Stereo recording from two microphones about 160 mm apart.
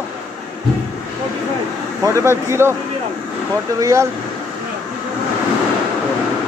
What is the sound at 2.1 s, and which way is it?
Speech, 15° right (ahead or behind).